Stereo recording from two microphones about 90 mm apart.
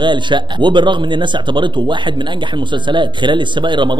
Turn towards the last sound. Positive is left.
turn(degrees=-60)  # may be behind; listen again after turning